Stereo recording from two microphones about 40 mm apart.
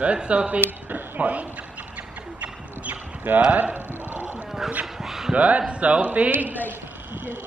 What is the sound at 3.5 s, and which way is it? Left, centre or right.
Speech, right.